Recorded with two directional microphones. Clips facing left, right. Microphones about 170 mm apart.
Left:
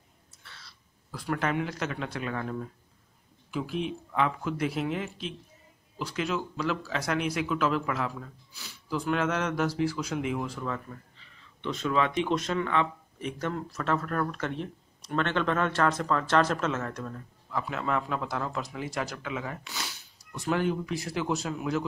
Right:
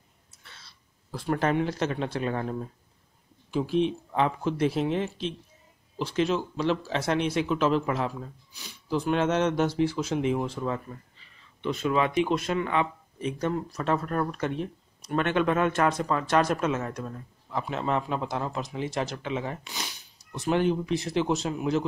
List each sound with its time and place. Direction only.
0.5 s speech: 25° right (ahead or behind)
11.6 s speech: 10° right (ahead or behind); by 19.6 s 30° right (ahead or behind)
19.6 s speech: 15° right (ahead or behind)